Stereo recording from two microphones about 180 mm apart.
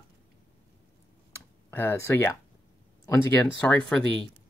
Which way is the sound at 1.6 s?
10° left (ahead or behind).